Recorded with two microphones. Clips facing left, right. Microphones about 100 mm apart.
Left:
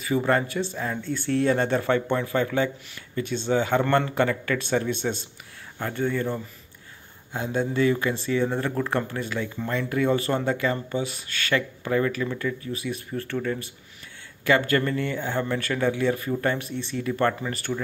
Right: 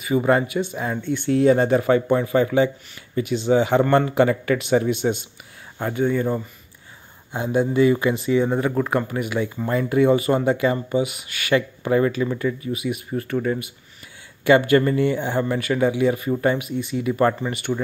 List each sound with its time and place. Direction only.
0.2 s speech: 15° right (ahead or behind)
7.4 s speech: 15° right (ahead or behind)
14.4 s speech: 20° right (ahead or behind)